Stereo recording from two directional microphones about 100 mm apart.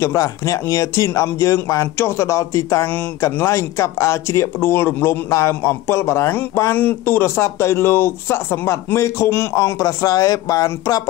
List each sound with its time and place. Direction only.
0.0 s speech: 30° left (ahead or behind)